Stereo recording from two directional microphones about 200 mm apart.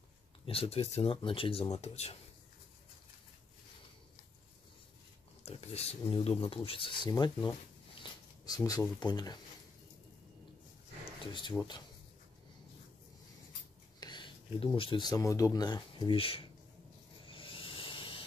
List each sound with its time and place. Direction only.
0.5 s speech: 30° left (ahead or behind)
5.4 s speech: 30° left (ahead or behind)
11.5 s speech: 10° left (ahead or behind)
13.9 s speech: 20° left (ahead or behind)
17.3 s a sound: 25° left (ahead or behind)